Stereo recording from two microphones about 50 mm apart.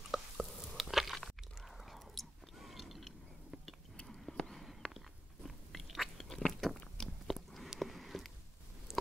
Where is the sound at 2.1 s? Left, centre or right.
Centre.